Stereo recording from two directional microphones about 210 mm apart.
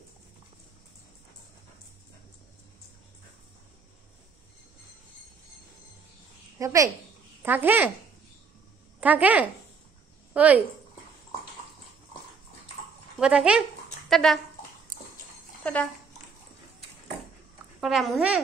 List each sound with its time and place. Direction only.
6.6 s a woman's voice: 15° right (ahead or behind)
9.0 s a woman's voice: 5° right (ahead or behind)
13.2 s speech: 5° right (ahead or behind)
15.6 s speech: 5° left (ahead or behind)
17.7 s speech: centre (ahead or behind)